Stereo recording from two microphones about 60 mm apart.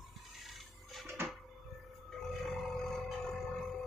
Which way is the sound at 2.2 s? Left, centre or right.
Centre.